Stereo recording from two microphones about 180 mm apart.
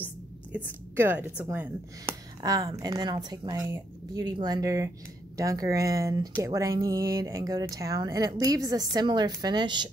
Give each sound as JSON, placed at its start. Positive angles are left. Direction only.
{"t": 0.7, "sound": "a woman's voice", "side_deg": -10}